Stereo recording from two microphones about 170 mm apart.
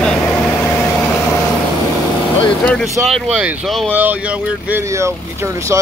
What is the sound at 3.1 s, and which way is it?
Speech, 5° right (ahead or behind).